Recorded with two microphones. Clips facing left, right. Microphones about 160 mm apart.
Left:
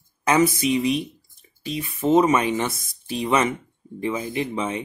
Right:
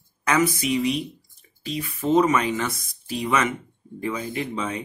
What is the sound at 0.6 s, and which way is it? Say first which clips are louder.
Speech: left 2 dB; 25° left (ahead or behind).